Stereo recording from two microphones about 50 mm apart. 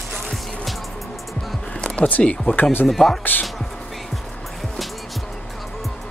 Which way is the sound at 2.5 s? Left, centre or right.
Left.